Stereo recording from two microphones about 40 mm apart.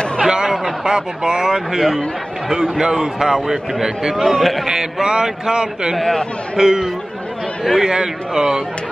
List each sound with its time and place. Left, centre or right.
0.2 s a man's voice: centre
2.8 s a man's voice: centre
4.9 s a man's voice: centre
5.9 s speech: centre
6.5 s a man's voice: centre